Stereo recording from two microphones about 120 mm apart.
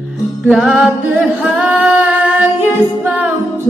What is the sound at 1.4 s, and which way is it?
Female singing, 5° right (ahead or behind).